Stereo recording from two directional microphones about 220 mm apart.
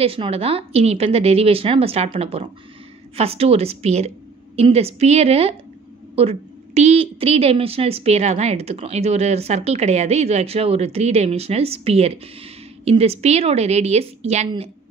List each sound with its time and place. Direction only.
0.0 s a woman's voice: 25° right (ahead or behind)